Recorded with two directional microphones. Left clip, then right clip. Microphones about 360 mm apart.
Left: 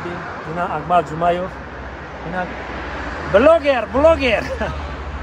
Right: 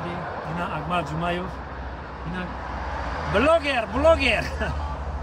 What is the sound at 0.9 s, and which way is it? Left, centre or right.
Speech, centre.